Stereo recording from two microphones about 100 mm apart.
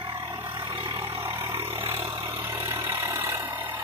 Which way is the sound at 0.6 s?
55° right (ahead or behind).